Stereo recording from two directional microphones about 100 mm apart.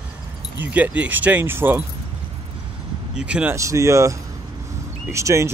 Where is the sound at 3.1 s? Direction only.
10° right (ahead or behind).